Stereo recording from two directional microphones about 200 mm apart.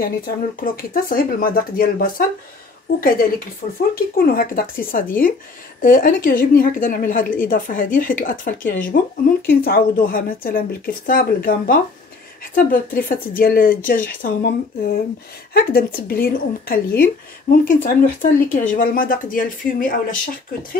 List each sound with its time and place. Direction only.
0.0 s speech: 45° left (ahead or behind)